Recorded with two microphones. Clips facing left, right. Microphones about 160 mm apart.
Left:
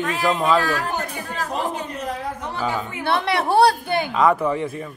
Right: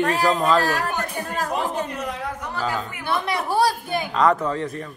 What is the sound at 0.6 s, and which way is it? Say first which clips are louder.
Speech: even; 40° right (ahead or behind).